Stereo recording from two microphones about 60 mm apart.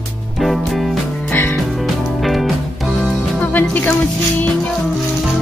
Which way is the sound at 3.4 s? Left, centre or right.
Left.